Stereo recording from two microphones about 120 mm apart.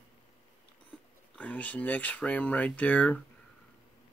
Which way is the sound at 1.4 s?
10° left (ahead or behind).